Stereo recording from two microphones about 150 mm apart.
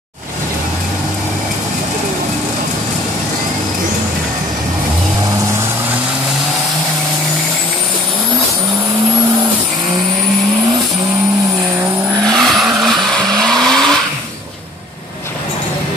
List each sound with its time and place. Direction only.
12.3 s vehicle: centre (ahead or behind)